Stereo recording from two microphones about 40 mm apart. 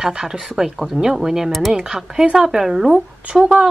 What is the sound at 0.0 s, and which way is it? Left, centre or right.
Speech, centre.